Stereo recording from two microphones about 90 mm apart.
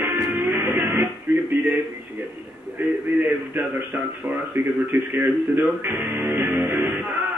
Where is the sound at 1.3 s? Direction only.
20° right (ahead or behind).